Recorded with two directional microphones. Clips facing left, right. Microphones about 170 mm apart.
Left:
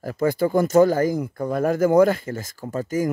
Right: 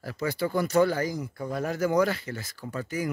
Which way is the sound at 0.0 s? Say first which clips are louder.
Left 8 dB; 45° left (ahead or behind).